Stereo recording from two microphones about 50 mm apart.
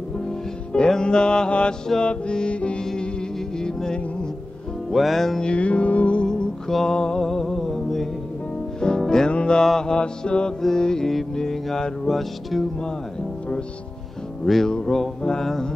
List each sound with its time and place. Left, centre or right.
0.7 s music: centre
2.8 s music: centre
4.9 s music: centre
5.4 s music: left
7.2 s music: centre; by 9.6 s left
9.6 s music: centre
14.4 s music: centre